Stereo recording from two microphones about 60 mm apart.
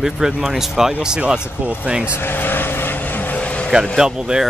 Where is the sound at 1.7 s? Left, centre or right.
Centre.